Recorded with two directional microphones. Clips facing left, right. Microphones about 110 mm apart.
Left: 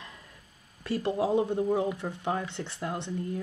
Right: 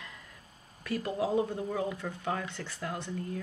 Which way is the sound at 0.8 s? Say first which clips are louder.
Left 4 dB; 30° left (ahead or behind).